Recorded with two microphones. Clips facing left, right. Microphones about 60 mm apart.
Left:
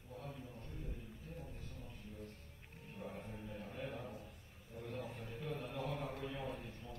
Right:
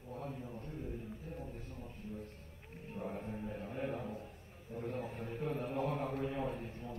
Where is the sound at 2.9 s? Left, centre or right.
Right.